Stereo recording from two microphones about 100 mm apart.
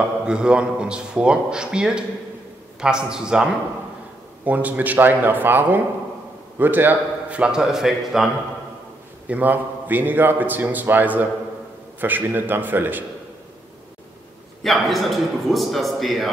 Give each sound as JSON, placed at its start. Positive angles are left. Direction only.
{"t": 0.2, "sound": "a man's voice", "side_deg": -10}
{"t": 9.3, "sound": "a man's voice", "side_deg": -15}
{"t": 14.6, "sound": "a man's voice", "side_deg": 0}